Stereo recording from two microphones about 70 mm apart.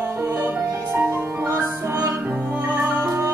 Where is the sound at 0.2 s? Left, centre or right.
Right.